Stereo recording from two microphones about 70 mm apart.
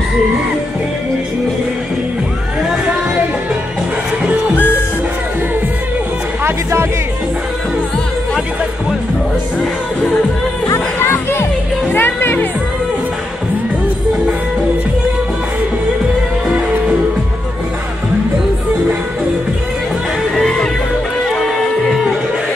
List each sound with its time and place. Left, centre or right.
4.6 s music: left
6.4 s music: right
10.7 s music: left
11.9 s speech: left
20.3 s music: centre